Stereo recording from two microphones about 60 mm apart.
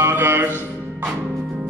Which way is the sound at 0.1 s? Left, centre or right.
Right.